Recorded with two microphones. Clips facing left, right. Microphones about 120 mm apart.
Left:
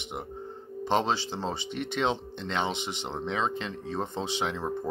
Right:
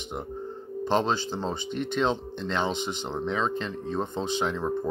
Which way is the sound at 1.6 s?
75° left (ahead or behind).